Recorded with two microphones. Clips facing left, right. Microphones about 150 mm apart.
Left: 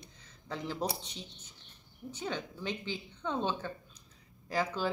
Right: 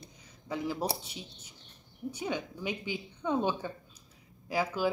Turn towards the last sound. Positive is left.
turn(degrees=-10)  # may be behind; listen again after turning